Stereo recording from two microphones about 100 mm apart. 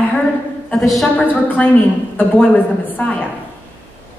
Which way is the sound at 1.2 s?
15° left (ahead or behind).